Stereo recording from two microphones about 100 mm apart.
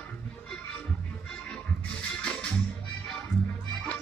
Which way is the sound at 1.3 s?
10° left (ahead or behind).